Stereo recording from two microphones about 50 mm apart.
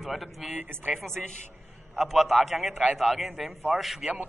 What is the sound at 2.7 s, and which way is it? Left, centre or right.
Speech, right.